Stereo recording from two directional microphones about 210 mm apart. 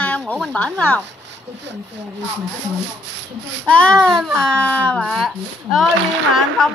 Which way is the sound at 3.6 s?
5° left (ahead or behind).